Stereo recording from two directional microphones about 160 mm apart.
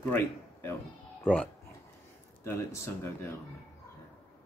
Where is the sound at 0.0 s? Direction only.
10° left (ahead or behind).